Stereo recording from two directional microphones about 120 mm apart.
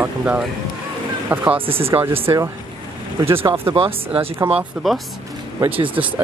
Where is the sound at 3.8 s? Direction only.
50° right (ahead or behind).